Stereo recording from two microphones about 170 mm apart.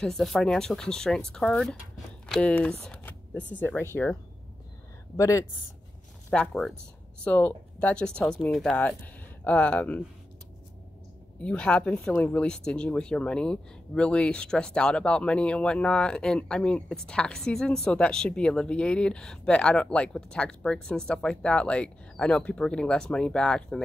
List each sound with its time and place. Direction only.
0.0 s speech: centre (ahead or behind); by 5.5 s 20° left (ahead or behind)
6.3 s speech: 5° left (ahead or behind)
11.4 s speech: 5° left (ahead or behind)